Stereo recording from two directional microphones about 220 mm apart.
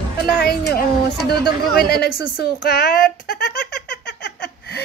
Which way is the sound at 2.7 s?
45° left (ahead or behind).